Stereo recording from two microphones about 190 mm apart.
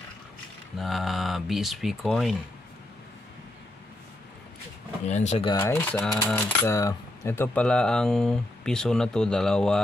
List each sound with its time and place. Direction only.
0.7 s coin: centre (ahead or behind)
5.0 s speech: 35° left (ahead or behind)
5.5 s coin: 15° left (ahead or behind)